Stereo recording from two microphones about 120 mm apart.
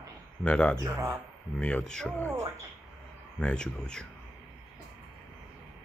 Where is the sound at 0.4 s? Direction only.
10° left (ahead or behind).